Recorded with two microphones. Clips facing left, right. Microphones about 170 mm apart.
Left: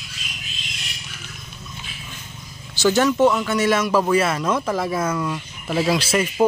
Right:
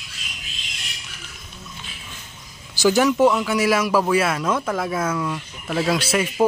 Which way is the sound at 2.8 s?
10° right (ahead or behind).